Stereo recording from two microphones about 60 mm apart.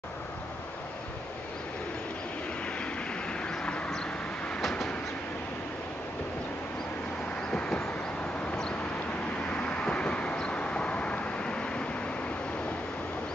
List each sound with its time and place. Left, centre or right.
2.6 s vehicle: centre
4.6 s train: centre
7.5 s vehicle: centre
9.5 s vehicle: centre